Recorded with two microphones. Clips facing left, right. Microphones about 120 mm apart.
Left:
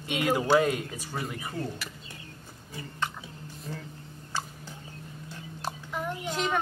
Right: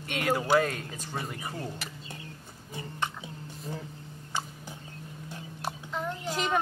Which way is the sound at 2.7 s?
20° right (ahead or behind).